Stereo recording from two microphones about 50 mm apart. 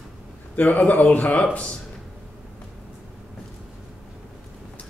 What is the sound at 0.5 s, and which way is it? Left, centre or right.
Speech, left.